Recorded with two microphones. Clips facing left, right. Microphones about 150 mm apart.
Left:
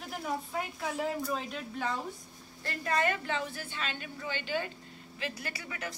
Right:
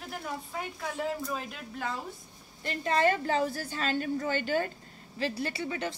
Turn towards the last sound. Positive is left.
turn(degrees=-25)  # may be behind; listen again after turning